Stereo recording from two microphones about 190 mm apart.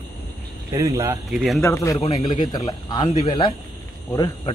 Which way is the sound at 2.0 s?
25° left (ahead or behind).